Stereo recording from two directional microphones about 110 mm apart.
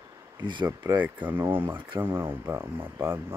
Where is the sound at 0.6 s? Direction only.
20° right (ahead or behind).